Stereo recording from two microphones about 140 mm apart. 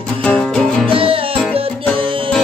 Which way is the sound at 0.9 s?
40° right (ahead or behind).